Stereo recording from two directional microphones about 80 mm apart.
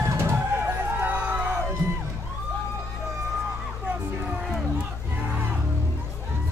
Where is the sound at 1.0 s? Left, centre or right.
Centre.